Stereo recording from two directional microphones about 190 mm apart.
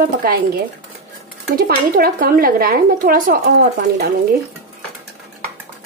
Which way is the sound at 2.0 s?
50° right (ahead or behind).